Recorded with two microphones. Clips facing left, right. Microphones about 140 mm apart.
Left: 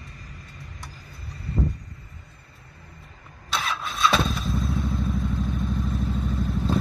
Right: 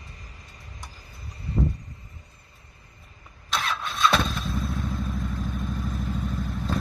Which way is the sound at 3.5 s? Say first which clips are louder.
Even; centre (ahead or behind).